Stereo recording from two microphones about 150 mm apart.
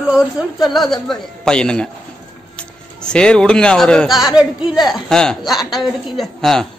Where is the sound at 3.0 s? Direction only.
5° left (ahead or behind).